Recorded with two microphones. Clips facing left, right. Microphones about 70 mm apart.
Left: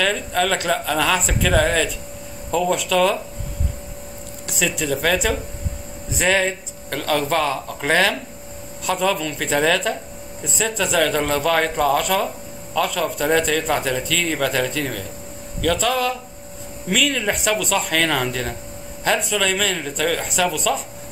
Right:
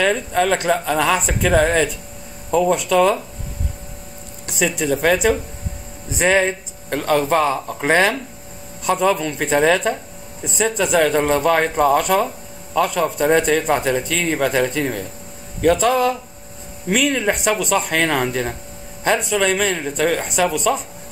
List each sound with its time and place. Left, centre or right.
0.0 s speech: centre
4.6 s speech: centre
20.5 s speech: centre